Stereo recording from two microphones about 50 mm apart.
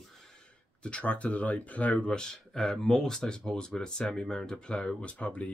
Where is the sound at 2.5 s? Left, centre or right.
Centre.